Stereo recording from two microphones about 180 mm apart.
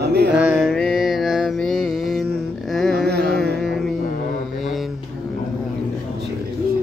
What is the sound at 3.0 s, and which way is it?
Carnatic music, 65° right (ahead or behind).